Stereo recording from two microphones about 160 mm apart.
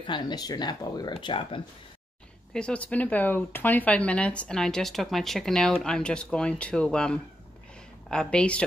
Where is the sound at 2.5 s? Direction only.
5° left (ahead or behind).